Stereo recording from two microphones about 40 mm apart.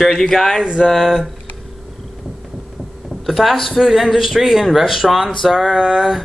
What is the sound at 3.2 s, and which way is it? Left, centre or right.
Speech, centre.